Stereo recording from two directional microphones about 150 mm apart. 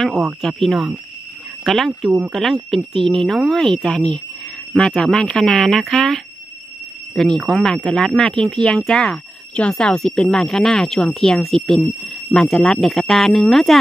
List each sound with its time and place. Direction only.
0.0 s speech: centre (ahead or behind)